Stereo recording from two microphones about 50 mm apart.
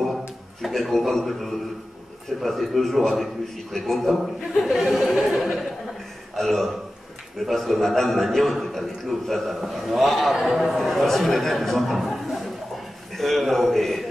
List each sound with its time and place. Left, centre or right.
0.6 s a man's voice: centre
6.3 s a man's voice: centre